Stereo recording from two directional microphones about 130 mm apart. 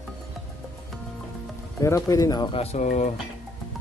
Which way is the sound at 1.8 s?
25° left (ahead or behind).